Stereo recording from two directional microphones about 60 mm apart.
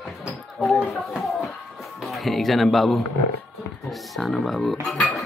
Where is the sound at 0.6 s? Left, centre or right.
Left.